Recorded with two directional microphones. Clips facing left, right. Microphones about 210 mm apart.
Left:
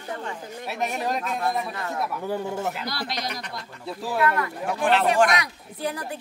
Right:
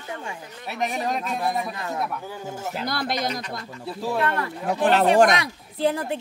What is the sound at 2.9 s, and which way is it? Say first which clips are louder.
Speech: right 5 dB; 50° right (ahead or behind).